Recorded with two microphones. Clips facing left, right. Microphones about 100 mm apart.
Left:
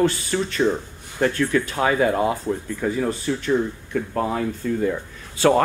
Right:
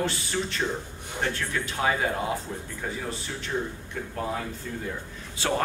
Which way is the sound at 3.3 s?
90° left.